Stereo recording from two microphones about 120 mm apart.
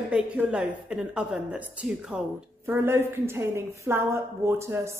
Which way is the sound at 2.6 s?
20° right (ahead or behind).